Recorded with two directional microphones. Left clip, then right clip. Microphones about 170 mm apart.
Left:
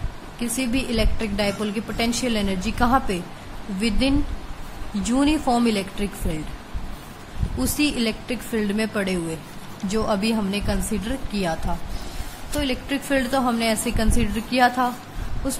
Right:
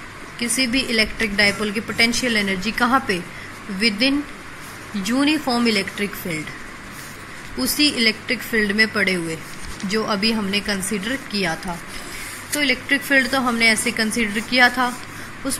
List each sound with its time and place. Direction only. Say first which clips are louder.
0.4 s a woman's voice: right 5 dB; 15° left (ahead or behind)
5.2 s a woman's voice: right 1 dB; 20° left (ahead or behind)
7.5 s a woman's voice: right 4 dB; 20° left (ahead or behind)
12.5 s a woman's voice: right 6 dB; 15° left (ahead or behind)